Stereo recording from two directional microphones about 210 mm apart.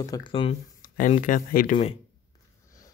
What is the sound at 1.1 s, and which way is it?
Speech, 40° left (ahead or behind).